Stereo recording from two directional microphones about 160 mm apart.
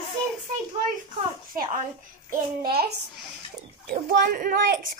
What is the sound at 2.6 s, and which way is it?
Speech, 75° right (ahead or behind).